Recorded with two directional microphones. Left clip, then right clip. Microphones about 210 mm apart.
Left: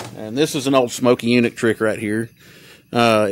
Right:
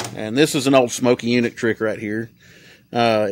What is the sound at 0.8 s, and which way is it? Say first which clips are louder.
Speech: left 2 dB; centre (ahead or behind).